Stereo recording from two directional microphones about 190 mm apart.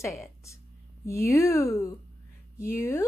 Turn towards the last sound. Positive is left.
turn(degrees=15)  # may be behind; listen again after turning